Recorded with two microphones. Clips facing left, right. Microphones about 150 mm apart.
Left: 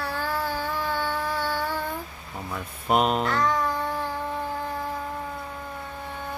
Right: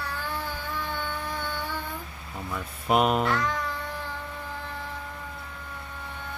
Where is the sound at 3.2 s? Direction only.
40° left (ahead or behind).